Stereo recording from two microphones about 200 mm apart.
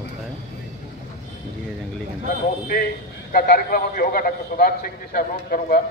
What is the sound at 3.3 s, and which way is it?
A man's voice, 45° left (ahead or behind).